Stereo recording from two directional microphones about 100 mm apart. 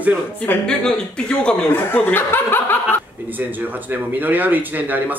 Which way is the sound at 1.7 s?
20° left (ahead or behind).